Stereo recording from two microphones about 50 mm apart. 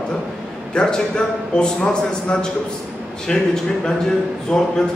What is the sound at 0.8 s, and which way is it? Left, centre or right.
A man's voice, centre.